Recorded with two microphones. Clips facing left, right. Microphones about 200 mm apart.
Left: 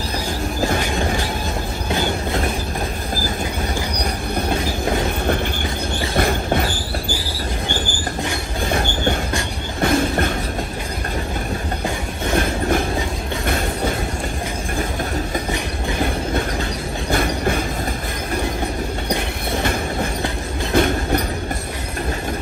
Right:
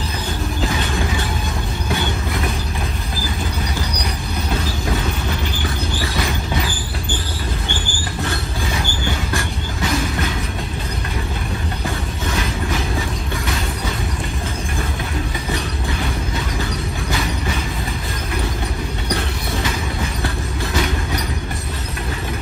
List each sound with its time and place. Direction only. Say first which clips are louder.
4.9 s train: left 4 dB; 55° left (ahead or behind)
6.1 s a sound: left 7 dB; 55° left (ahead or behind)
8.6 s train: left 6 dB; 50° left (ahead or behind)
9.8 s music: left 5 dB; 55° left (ahead or behind)
12.3 s train: left 5 dB; 50° left (ahead or behind)
17.1 s train: left 6 dB; 50° left (ahead or behind)
19.5 s train: left 4 dB; 55° left (ahead or behind)